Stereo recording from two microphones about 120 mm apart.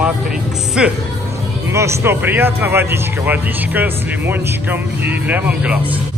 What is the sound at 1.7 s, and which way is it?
Speech, 25° right (ahead or behind).